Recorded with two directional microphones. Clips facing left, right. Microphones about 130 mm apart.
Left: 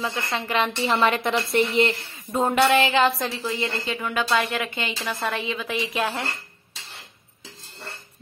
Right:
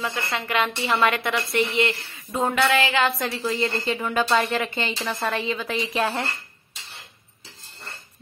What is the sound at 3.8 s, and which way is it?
A woman's voice, centre (ahead or behind).